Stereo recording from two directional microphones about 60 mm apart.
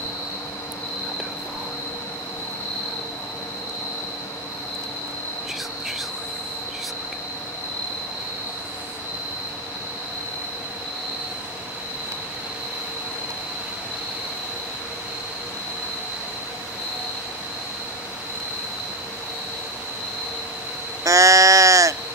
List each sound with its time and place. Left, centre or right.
21.0 s sheep: right